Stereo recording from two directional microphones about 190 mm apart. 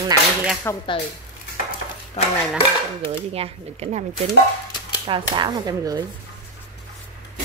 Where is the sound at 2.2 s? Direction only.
35° left (ahead or behind).